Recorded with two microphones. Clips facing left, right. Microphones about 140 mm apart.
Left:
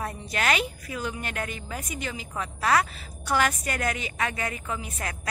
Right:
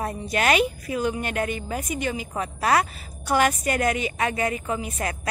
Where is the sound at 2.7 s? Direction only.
20° right (ahead or behind).